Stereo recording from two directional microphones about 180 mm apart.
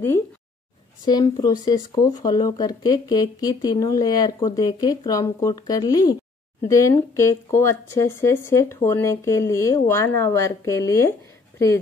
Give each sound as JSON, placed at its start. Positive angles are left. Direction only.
{"t": 1.0, "sound": "speech", "side_deg": 20}